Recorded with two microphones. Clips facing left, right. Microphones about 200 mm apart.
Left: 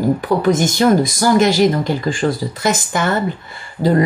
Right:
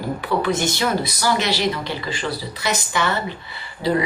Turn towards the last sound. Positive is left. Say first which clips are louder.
# left 5 dB
turn(degrees=45)  # may be behind; listen again after turning